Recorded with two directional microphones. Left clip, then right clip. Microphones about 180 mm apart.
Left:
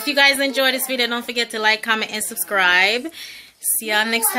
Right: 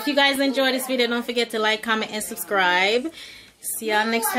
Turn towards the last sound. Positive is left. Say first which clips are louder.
# left 2 dB
turn(degrees=0)  # may be behind; listen again after turning